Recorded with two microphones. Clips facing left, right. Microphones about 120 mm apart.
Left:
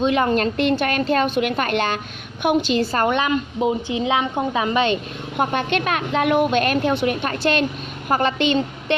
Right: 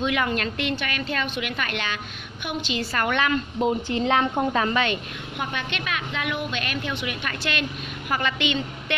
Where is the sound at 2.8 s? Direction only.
25° left (ahead or behind).